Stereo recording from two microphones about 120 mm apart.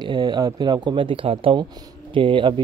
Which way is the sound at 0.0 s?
35° right (ahead or behind).